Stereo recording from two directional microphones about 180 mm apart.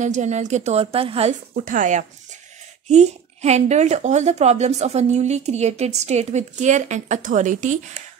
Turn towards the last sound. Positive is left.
turn(degrees=-45)  # may be behind; listen again after turning